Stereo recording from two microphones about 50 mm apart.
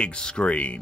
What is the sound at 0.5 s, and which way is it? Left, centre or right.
Speech, left.